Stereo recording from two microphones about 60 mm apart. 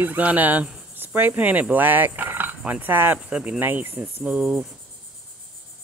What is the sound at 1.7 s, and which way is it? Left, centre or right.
Speech, right.